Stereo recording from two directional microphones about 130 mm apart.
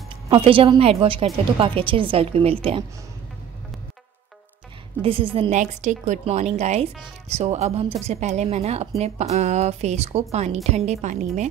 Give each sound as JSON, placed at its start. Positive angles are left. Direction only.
{"t": 0.3, "sound": "a woman's voice", "side_deg": -45}
{"t": 5.0, "sound": "a woman's voice", "side_deg": -45}
{"t": 5.5, "sound": "a woman's voice", "side_deg": -70}
{"t": 6.2, "sound": "a woman's voice", "side_deg": -55}